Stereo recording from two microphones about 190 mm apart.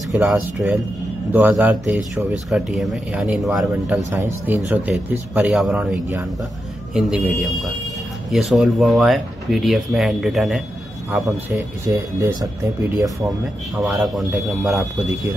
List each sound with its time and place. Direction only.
0.1 s speech: centre (ahead or behind)
4.1 s speech: 15° right (ahead or behind)
11.1 s speech: 15° right (ahead or behind)
13.8 s speech: centre (ahead or behind)